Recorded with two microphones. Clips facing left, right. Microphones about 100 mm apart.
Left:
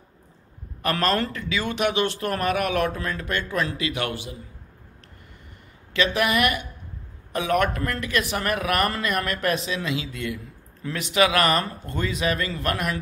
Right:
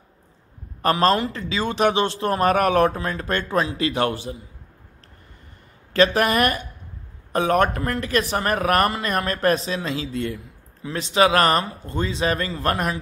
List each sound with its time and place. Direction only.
0.8 s a man's voice: 35° right (ahead or behind)
5.9 s a man's voice: 35° right (ahead or behind)